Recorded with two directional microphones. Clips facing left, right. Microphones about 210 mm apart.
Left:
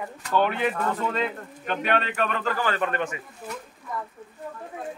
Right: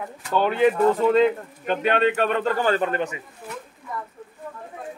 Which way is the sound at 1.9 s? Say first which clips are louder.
Right 5 dB; 30° right (ahead or behind).